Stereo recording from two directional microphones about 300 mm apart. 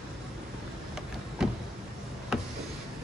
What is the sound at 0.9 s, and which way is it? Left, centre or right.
Vehicle, centre.